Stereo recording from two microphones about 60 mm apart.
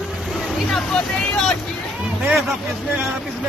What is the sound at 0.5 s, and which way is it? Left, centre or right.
Speech, centre.